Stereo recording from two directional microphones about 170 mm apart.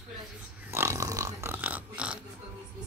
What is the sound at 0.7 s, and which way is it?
Burping, 15° right (ahead or behind).